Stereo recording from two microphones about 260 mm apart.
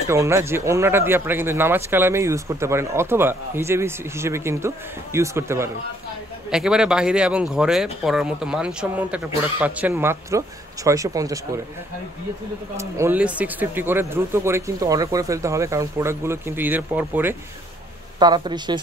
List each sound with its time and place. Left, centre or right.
0.1 s speech: centre
12.7 s speech: centre